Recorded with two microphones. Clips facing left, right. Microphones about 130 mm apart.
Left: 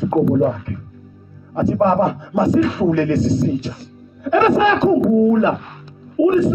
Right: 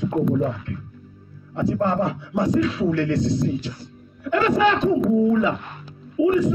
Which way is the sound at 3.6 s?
70° left (ahead or behind).